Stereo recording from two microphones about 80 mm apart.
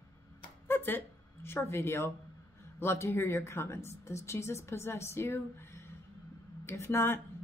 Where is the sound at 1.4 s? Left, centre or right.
Left.